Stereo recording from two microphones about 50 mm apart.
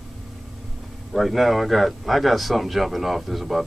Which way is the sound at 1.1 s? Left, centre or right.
Centre.